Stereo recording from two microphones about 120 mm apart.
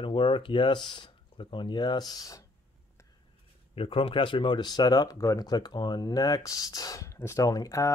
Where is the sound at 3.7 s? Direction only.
50° left (ahead or behind); by 7.9 s 30° left (ahead or behind).